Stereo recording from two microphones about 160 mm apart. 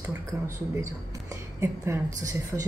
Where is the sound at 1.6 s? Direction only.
15° right (ahead or behind).